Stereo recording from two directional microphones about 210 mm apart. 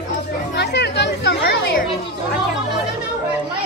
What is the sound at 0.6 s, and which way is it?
Music, 55° left (ahead or behind).